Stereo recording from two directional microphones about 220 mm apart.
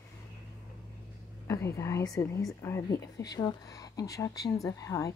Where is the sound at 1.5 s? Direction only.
15° left (ahead or behind).